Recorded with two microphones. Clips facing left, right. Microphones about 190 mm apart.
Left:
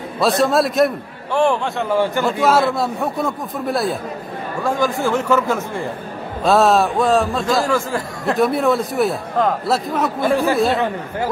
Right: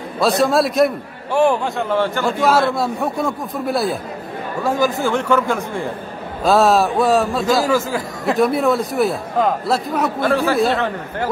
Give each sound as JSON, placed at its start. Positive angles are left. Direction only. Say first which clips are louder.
{"t": 0.2, "sound": "a man's voice", "louder": "even", "side_deg": 0}
{"t": 1.9, "sound": "a man's voice", "louder": "left 2 dB", "side_deg": 15}
{"t": 2.2, "sound": "a man's voice", "louder": "right 1 dB", "side_deg": 0}